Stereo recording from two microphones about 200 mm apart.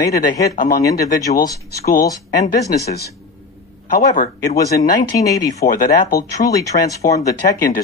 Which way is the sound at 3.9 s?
40° left (ahead or behind).